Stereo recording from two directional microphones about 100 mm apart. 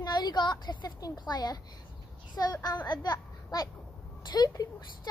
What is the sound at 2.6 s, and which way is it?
A child's voice, 45° left (ahead or behind).